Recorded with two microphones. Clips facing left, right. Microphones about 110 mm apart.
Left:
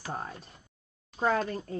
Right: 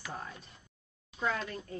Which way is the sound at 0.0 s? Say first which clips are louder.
Left 5 dB; 40° left (ahead or behind).